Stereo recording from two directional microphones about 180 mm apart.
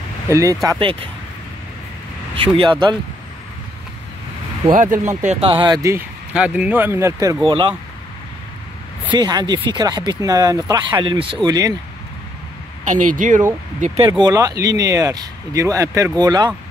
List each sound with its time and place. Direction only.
0.3 s speech: 15° right (ahead or behind)
0.7 s speech: 30° right (ahead or behind)
2.3 s speech: 30° right (ahead or behind)
5.0 s speech: 40° right (ahead or behind); by 6.0 s 15° right (ahead or behind)
6.3 s speech: 5° right (ahead or behind)
7.4 s speech: 25° right (ahead or behind)
9.1 s speech: 20° right (ahead or behind)
12.8 s speech: 45° right (ahead or behind)
14.0 s speech: 25° right (ahead or behind)